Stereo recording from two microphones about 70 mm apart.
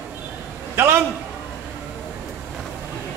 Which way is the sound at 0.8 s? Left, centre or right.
Right.